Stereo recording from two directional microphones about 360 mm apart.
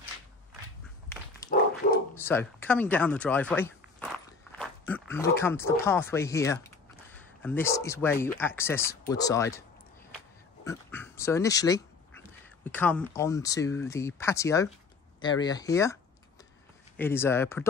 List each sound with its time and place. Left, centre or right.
1.4 s dog: centre
1.8 s bow-wow: left
2.2 s speech: centre